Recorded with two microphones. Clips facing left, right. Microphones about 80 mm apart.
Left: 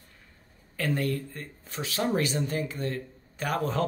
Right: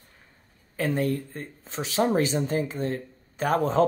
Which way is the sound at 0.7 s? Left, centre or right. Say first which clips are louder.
Right 3 dB; right.